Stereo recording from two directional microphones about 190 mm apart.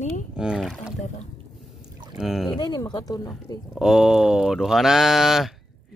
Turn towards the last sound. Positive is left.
turn(degrees=0)  # may be behind; listen again after turning